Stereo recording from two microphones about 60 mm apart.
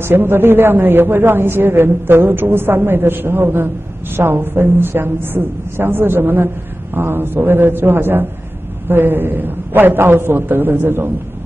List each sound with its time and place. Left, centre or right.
0.0 s a man's voice: right